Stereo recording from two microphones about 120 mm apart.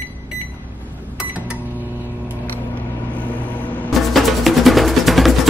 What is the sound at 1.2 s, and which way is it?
Cash register, 10° right (ahead or behind).